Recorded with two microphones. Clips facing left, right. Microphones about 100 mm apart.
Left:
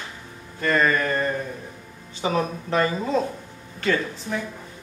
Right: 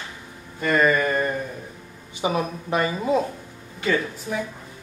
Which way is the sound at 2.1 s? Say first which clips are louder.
Even; 15° right (ahead or behind).